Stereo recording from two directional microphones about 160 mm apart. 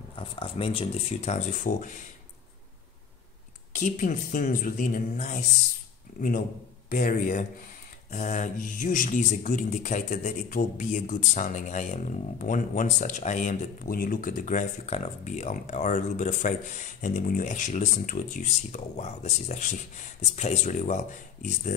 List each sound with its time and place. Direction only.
0.1 s speech: 35° left (ahead or behind); by 1.9 s 50° left (ahead or behind)
3.7 s speech: 55° left (ahead or behind)
6.9 s speech: 60° left (ahead or behind)